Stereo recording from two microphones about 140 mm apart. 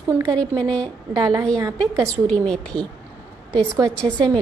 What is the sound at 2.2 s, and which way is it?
Speech, 5° left (ahead or behind).